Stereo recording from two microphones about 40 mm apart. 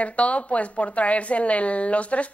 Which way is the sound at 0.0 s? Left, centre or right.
Left.